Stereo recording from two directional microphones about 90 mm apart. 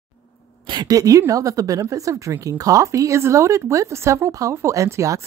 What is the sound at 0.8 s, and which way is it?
Speech, 40° right (ahead or behind).